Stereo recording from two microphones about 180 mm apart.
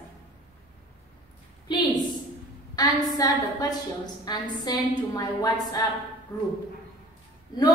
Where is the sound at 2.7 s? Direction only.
20° left (ahead or behind).